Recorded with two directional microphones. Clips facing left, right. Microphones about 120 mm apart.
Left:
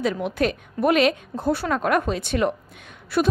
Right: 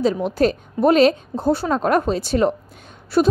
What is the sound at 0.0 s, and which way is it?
A woman's voice, 35° right (ahead or behind).